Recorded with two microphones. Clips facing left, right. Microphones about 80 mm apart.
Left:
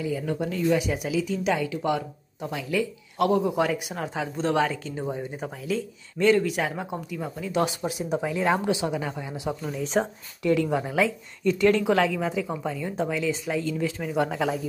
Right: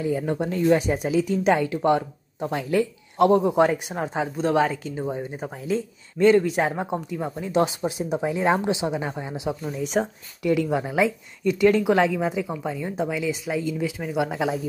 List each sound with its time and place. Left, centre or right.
0.0 s speech: right; by 14.6 s centre